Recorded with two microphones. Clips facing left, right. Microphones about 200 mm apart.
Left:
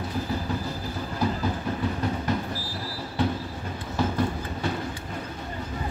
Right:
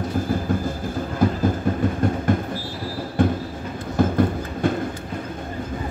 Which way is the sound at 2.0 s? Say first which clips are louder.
Right 7 dB; 50° right (ahead or behind).